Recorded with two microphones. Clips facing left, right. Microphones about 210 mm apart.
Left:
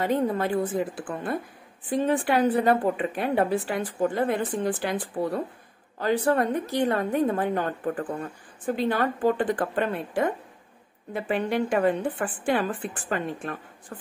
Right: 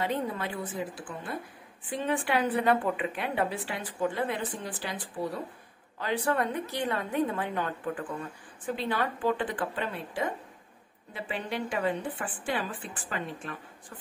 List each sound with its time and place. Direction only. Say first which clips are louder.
0.0 s a woman's voice: left 7 dB; 45° left (ahead or behind)
1.9 s a woman's voice: left 6 dB; 40° left (ahead or behind)
5.9 s a woman's voice: left 6 dB; 40° left (ahead or behind)